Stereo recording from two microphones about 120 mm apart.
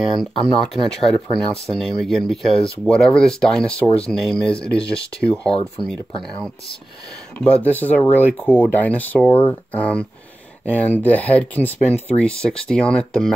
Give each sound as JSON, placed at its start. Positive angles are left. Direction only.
{"t": 0.6, "sound": "speech", "side_deg": 5}
{"t": 5.5, "sound": "speech", "side_deg": 50}
{"t": 7.3, "sound": "speech", "side_deg": 15}